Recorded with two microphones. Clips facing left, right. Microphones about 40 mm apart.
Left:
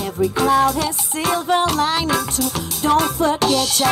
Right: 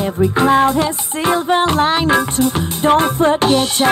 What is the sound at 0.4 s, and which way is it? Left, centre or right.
Music, right.